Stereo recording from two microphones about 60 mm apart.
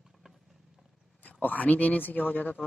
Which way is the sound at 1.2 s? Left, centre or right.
Left.